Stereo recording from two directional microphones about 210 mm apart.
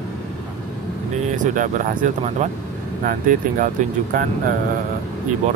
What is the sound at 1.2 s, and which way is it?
Speech, 35° right (ahead or behind).